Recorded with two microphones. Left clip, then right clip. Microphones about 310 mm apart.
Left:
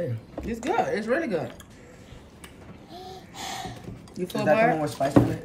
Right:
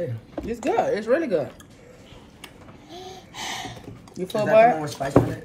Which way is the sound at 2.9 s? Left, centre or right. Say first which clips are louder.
Right 2 dB; right.